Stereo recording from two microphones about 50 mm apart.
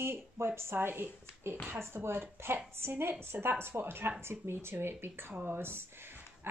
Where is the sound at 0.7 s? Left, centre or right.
Right.